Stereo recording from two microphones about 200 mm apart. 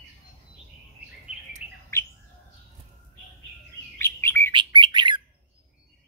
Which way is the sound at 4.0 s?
10° left (ahead or behind).